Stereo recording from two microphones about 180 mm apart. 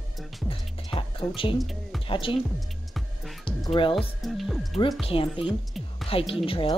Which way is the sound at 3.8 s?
30° left (ahead or behind).